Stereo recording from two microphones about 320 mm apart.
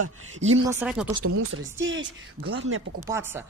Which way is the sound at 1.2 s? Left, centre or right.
Right.